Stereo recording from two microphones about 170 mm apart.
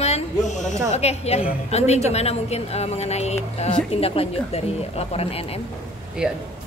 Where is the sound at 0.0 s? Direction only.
40° left (ahead or behind).